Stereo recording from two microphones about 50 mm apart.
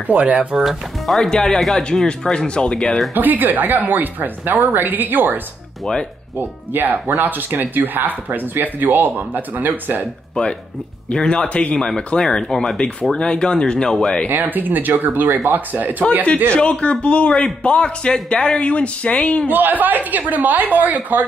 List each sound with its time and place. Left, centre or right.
0.1 s speech: right
0.6 s speech: centre
1.3 s speech: centre
3.2 s speech: right
10.4 s speech: centre
14.5 s speech: right
16.5 s a man's voice: left
19.5 s speech: right